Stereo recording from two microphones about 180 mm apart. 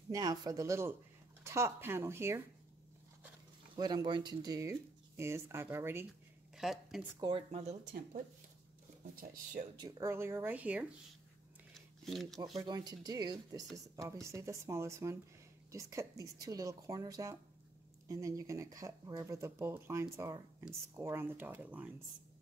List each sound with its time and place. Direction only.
0.1 s speech: 20° right (ahead or behind)
3.7 s speech: 20° right (ahead or behind)
6.5 s speech: centre (ahead or behind)
7.2 s speech: 25° right (ahead or behind)
7.5 s speech: 45° right (ahead or behind)
9.8 s speech: 20° right (ahead or behind)
12.0 s speech: centre (ahead or behind)
12.6 s speech: 20° right (ahead or behind)